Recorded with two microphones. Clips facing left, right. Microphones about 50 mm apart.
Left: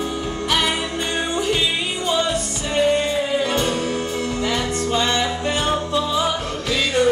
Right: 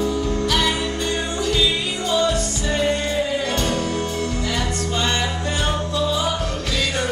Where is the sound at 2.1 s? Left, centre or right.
Left.